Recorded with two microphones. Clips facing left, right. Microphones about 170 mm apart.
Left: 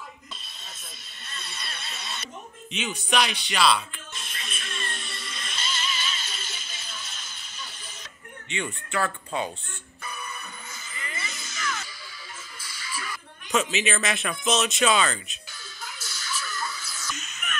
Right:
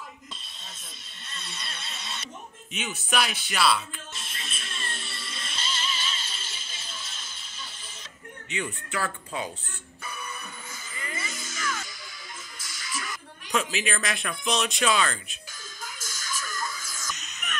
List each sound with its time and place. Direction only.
1.5 s a sound: 10° left (ahead or behind)
2.7 s speech: 5° right (ahead or behind)
4.1 s music: 30° right (ahead or behind)
8.5 s speech: 5° right (ahead or behind)
11.1 s a sound: 45° right (ahead or behind)
12.5 s music: 45° right (ahead or behind)
13.5 s speech: centre (ahead or behind)
15.8 s music: 45° right (ahead or behind)